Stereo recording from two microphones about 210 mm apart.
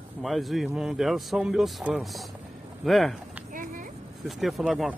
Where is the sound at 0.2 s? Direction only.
Centre (ahead or behind).